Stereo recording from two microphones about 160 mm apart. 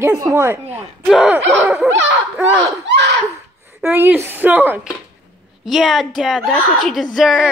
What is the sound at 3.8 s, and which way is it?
Speech, 15° right (ahead or behind).